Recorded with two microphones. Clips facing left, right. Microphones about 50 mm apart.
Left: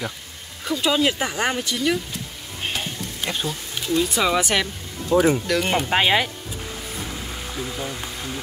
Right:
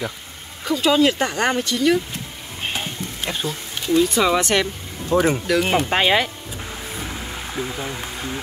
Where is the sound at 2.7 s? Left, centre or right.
Centre.